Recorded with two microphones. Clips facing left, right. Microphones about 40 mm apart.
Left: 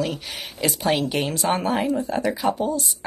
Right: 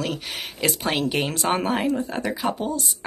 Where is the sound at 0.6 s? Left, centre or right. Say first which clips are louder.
Left 2 dB; right.